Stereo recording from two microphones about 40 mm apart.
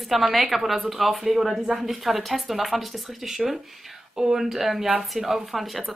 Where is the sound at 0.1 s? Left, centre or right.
Centre.